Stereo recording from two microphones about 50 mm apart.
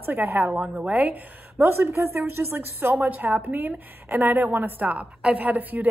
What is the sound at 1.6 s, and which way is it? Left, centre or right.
Speech, right.